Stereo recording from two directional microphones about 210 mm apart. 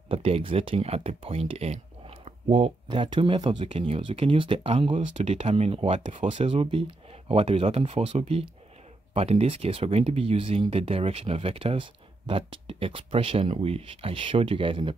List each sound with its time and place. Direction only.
0.1 s speech: 25° right (ahead or behind)